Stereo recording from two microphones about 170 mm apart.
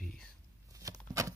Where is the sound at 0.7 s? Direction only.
20° right (ahead or behind).